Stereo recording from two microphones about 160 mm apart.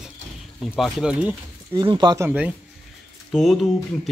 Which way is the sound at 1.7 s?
30° right (ahead or behind).